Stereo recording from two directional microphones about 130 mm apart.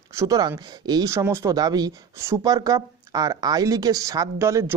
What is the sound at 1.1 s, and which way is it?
Speech, 20° right (ahead or behind).